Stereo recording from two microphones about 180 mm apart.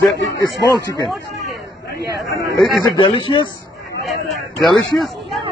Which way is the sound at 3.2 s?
25° left (ahead or behind).